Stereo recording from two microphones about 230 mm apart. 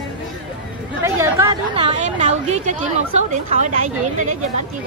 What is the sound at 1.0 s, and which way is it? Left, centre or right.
Speech, centre.